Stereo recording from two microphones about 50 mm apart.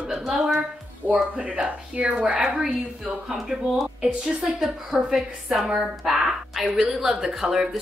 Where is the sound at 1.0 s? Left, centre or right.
Right.